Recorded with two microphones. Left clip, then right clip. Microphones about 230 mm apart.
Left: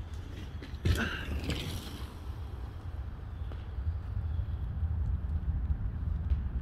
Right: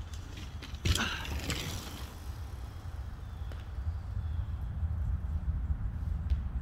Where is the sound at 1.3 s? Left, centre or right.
Centre.